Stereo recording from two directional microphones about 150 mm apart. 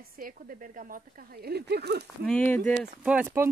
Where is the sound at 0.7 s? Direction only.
70° right (ahead or behind); by 2.0 s 90° right.